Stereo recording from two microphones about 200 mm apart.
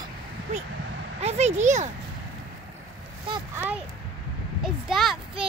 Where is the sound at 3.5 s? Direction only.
10° right (ahead or behind).